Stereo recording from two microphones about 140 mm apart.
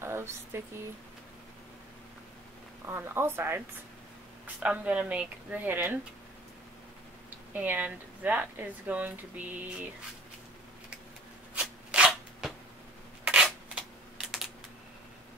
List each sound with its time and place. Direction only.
0.0 s a sound: 20° right (ahead or behind)
2.9 s speech: 15° right (ahead or behind)
4.6 s speech: 10° right (ahead or behind)
7.5 s speech: 10° right (ahead or behind)
11.5 s rub: 10° right (ahead or behind)